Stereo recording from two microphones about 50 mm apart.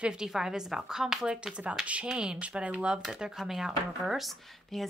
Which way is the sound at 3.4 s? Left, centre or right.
Centre.